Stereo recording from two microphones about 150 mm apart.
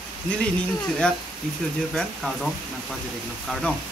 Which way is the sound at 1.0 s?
5° left (ahead or behind).